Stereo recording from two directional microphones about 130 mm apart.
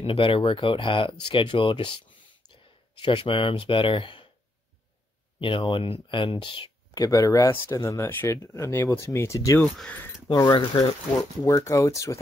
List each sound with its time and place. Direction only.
0.0 s speech: 40° left (ahead or behind)
3.0 s speech: 45° left (ahead or behind)
5.4 s speech: 40° left (ahead or behind); by 9.6 s 25° left (ahead or behind)
9.6 s speech: 10° left (ahead or behind)
10.3 s speech: 30° left (ahead or behind)
11.4 s speech: 20° left (ahead or behind)